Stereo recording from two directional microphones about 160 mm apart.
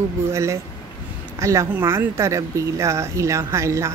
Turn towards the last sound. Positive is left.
turn(degrees=-20)  # may be behind; listen again after turning